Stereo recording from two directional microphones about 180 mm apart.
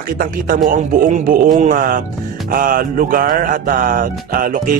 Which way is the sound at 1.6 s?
45° right (ahead or behind).